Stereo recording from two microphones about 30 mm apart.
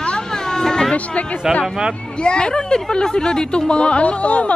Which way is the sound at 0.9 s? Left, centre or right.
Left.